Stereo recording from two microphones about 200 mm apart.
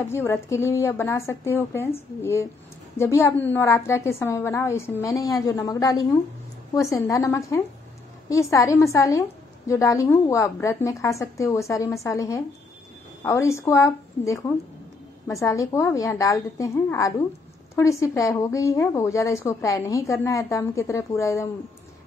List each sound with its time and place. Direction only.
0.1 s a woman's voice: 15° left (ahead or behind)
3.0 s a woman's voice: 15° left (ahead or behind)
15.4 s a woman's voice: 15° left (ahead or behind)